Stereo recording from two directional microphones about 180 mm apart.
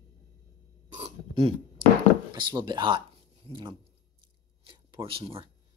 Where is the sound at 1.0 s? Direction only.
35° right (ahead or behind).